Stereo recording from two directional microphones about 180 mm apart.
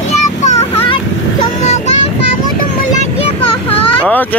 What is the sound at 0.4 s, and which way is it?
Vehicle, 40° left (ahead or behind).